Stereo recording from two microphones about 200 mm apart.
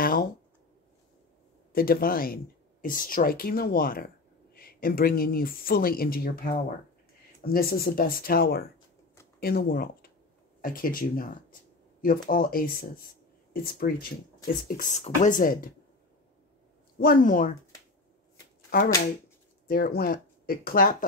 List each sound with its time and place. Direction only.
0.0 s a sound: 45° left (ahead or behind)
1.7 s speech: 45° left (ahead or behind)
17.0 s speech: 45° left (ahead or behind)
18.7 s speech: 50° left (ahead or behind)